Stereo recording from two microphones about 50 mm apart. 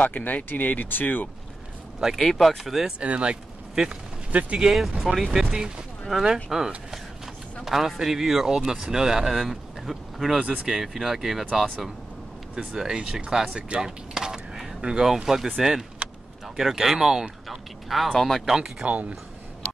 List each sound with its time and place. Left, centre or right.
0.0 s speech: left
2.0 s speech: centre
2.2 s speech: centre
3.0 s speech: right
4.6 s speech: centre
10.4 s speech: right
10.7 s speech: centre
12.5 s speech: centre
13.8 s a sound: centre
14.8 s speech: centre
16.0 s vehicle: centre
16.5 s speech: centre
18.4 s speech: centre
18.8 s speech: right